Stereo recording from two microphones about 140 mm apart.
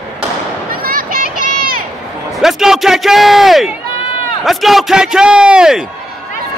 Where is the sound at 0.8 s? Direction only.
90° right.